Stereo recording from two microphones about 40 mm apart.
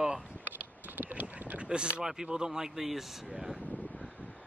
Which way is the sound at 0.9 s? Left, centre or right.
Right.